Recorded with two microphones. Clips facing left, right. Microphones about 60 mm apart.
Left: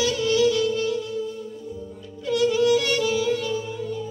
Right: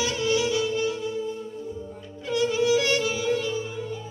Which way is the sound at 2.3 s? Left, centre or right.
Centre.